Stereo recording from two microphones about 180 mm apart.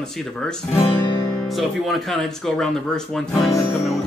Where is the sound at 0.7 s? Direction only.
30° left (ahead or behind).